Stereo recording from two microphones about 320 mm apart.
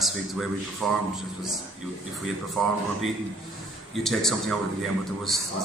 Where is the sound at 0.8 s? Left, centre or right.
Centre.